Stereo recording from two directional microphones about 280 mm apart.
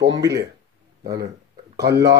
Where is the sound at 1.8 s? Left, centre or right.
Right.